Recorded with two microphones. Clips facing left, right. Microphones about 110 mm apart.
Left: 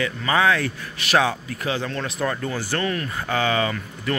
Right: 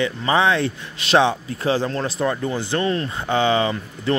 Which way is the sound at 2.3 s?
20° right (ahead or behind).